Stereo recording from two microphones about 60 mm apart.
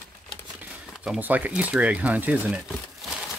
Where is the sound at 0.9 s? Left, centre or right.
Centre.